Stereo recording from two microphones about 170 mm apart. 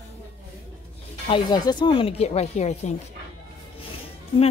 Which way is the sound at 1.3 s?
25° left (ahead or behind).